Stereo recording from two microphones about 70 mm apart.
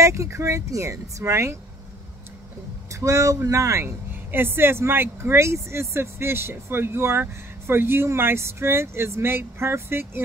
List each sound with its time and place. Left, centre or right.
0.0 s speech: right
2.9 s speech: right
3.8 s speech: right